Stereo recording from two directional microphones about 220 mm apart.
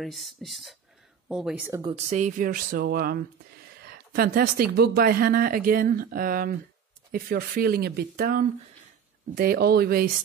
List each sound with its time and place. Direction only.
0.0 s speech: centre (ahead or behind)
1.8 s speech: 25° right (ahead or behind); by 10.0 s 45° right (ahead or behind)